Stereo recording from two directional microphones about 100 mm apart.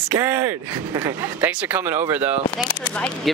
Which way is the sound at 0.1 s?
20° right (ahead or behind).